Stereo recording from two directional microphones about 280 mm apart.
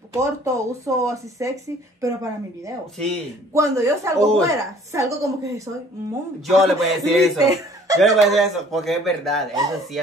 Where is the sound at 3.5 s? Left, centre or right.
Centre.